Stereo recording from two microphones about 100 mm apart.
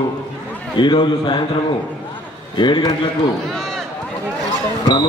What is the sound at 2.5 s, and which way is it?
Speech, 50° left (ahead or behind).